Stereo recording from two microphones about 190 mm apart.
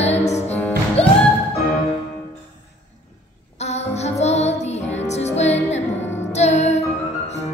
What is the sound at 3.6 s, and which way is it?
Music, 35° left (ahead or behind).